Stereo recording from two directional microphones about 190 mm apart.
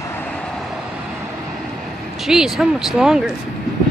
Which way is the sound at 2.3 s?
5° right (ahead or behind).